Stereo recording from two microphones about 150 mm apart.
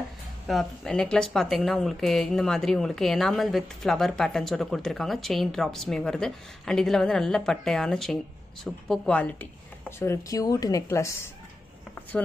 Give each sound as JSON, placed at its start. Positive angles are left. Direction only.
{"t": 0.5, "sound": "speech", "side_deg": 0}